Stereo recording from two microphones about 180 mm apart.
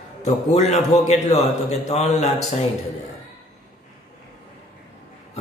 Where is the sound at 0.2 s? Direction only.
40° left (ahead or behind).